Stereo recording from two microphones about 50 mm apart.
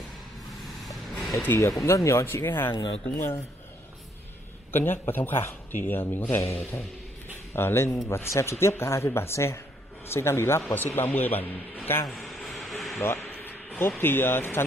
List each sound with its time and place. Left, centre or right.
1.5 s speech: left
1.9 s speech: left
2.3 s speech: left
4.7 s speech: left
7.5 s speech: left
10.7 s a man's voice: left
12.1 s a sound: centre
13.3 s speech: left